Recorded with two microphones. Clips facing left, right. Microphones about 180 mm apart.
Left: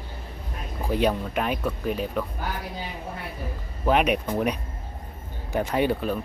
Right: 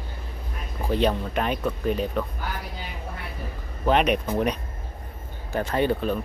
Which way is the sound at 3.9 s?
5° left (ahead or behind).